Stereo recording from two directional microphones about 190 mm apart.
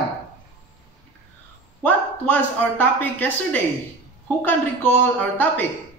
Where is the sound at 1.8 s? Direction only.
10° left (ahead or behind).